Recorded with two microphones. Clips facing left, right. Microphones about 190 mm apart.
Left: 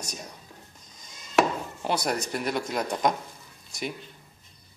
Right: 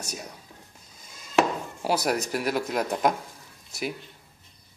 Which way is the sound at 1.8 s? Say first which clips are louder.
Right 3 dB; 5° right (ahead or behind).